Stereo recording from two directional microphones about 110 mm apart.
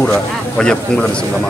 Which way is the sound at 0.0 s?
5° left (ahead or behind).